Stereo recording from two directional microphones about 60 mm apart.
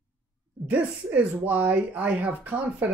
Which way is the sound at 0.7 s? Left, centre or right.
Right.